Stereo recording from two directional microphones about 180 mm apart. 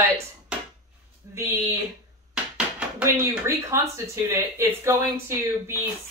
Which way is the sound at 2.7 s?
10° right (ahead or behind).